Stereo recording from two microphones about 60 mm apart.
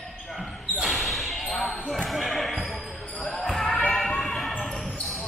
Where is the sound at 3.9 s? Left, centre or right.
Centre.